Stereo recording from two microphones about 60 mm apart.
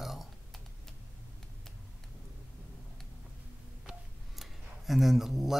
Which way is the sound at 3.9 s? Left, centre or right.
Centre.